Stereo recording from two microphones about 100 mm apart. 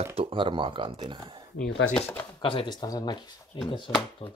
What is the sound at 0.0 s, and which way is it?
Speech, 85° right.